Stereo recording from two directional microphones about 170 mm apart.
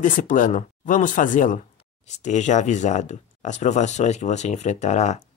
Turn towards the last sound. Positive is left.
turn(degrees=45)  # may be behind; listen again after turning